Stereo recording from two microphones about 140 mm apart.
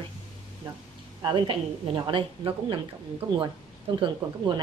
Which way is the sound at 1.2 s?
35° right (ahead or behind).